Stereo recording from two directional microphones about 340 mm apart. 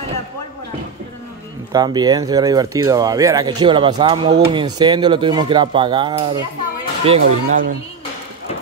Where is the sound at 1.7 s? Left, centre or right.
Centre.